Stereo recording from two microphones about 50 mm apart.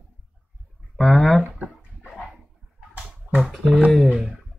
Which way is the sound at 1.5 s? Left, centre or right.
Right.